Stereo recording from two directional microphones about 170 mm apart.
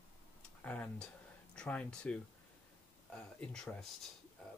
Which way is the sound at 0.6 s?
10° left (ahead or behind).